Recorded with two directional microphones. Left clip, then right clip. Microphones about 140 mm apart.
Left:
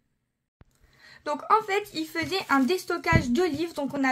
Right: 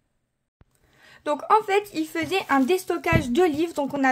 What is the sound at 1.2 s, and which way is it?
Speech, 15° right (ahead or behind).